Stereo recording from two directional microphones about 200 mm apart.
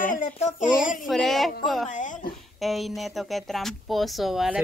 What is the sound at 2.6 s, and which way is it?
Speech, centre (ahead or behind).